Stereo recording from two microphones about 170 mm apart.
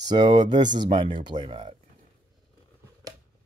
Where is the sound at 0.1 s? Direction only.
25° right (ahead or behind).